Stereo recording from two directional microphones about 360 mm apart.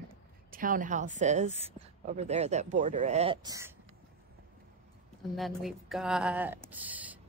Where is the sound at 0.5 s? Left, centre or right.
Right.